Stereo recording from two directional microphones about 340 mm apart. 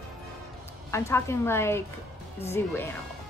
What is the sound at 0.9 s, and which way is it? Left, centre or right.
Speech, centre.